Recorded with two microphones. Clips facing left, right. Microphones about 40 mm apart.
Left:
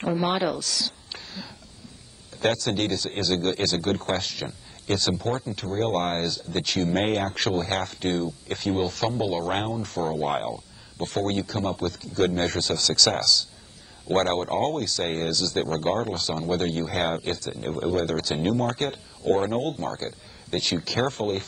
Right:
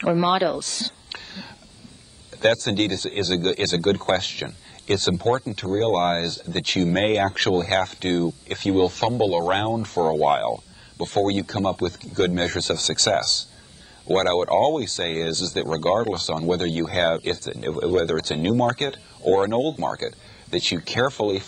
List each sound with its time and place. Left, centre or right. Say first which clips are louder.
0.0 s a woman's voice: right 5 dB; right
19.2 s speech: right 4 dB; right